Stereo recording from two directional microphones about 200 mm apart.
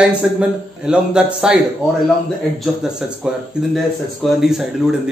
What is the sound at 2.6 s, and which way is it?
A man's voice, 5° right (ahead or behind).